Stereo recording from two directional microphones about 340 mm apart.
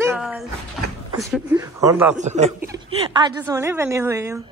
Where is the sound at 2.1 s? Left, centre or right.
Centre.